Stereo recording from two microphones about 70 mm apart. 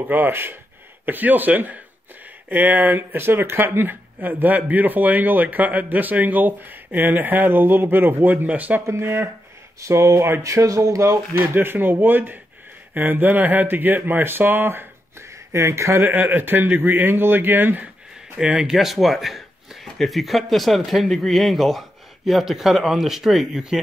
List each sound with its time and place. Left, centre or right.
0.1 s speech: right
9.0 s speech: right
9.8 s speech: right
10.4 s speech: right
11.5 s speech: right
16.1 s speech: right
18.4 s speech: centre
18.8 s speech: centre